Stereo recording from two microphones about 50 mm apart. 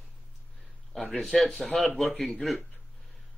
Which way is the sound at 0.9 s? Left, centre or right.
Centre.